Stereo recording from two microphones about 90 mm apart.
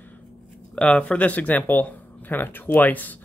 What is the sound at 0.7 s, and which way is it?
Speech, 10° left (ahead or behind).